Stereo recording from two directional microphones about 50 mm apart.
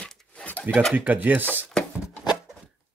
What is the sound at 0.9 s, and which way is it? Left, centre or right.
Speech, right.